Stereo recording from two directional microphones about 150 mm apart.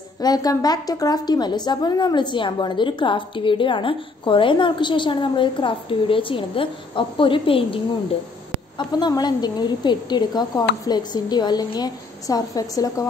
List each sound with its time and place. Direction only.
0.2 s a woman's voice: 25° left (ahead or behind)